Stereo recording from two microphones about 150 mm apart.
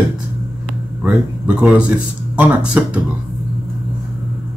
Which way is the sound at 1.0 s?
10° right (ahead or behind).